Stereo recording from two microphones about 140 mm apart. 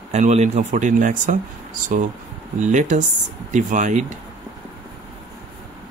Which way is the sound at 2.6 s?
60° right (ahead or behind).